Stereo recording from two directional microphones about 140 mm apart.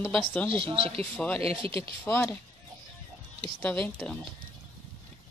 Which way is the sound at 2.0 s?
15° left (ahead or behind).